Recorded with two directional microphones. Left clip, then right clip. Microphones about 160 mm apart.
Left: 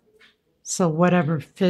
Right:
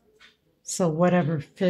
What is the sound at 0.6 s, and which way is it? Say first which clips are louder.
Speech: left 2 dB; 25° left (ahead or behind).